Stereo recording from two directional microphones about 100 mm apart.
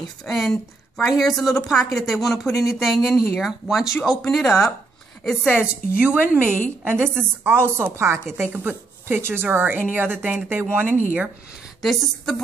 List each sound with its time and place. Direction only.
0.0 s a woman's voice: centre (ahead or behind)
5.5 s a woman's voice: 25° left (ahead or behind)
5.9 s a woman's voice: 15° right (ahead or behind)
11.8 s a woman's voice: centre (ahead or behind)